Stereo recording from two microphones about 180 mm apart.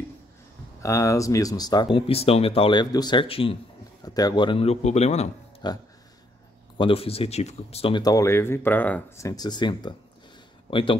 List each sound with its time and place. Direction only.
0.8 s speech: 15° left (ahead or behind)
4.0 s a man's voice: 20° left (ahead or behind); by 5.3 s 35° left (ahead or behind)
5.6 s speech: 25° left (ahead or behind)